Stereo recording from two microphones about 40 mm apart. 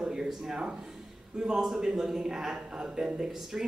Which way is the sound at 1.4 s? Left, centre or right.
Centre.